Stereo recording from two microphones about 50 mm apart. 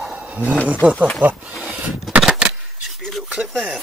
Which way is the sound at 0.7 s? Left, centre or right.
Right.